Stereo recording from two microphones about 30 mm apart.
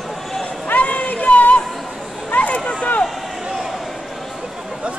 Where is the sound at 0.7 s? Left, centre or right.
Left.